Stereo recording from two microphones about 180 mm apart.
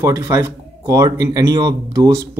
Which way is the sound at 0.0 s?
15° right (ahead or behind).